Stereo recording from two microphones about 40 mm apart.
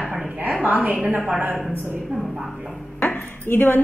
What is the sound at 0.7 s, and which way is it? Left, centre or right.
Speech, right.